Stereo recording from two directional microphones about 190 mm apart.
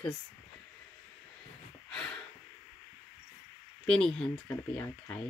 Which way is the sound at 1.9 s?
5° left (ahead or behind).